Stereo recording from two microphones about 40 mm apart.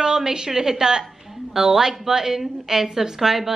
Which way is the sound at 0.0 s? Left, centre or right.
Centre.